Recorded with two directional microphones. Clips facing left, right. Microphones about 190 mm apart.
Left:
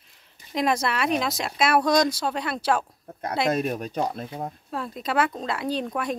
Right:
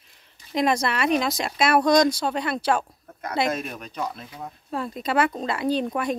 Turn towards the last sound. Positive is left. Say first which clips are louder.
# right 3 dB
turn(degrees=0)  # may be behind; listen again after turning